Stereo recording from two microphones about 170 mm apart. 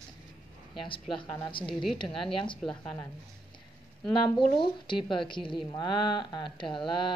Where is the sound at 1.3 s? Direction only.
25° left (ahead or behind).